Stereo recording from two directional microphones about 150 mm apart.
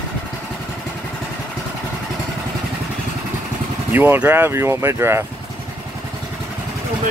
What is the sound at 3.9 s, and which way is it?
Speech, 15° right (ahead or behind).